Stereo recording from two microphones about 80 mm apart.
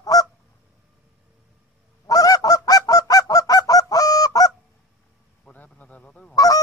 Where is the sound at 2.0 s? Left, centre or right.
Left.